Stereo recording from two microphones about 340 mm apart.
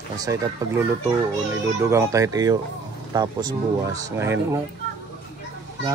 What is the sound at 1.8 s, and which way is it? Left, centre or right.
Speech, centre.